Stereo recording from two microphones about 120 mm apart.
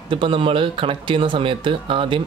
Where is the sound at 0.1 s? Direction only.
45° right (ahead or behind).